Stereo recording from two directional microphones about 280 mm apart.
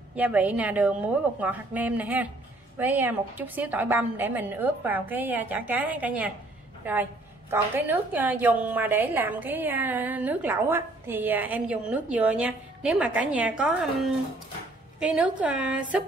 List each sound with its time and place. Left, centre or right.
0.1 s a woman's voice: centre
15.0 s a woman's voice: centre